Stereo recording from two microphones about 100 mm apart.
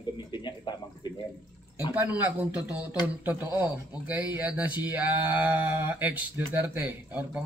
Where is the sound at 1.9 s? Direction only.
20° right (ahead or behind).